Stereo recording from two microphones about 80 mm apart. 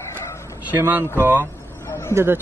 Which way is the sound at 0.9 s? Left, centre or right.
Right.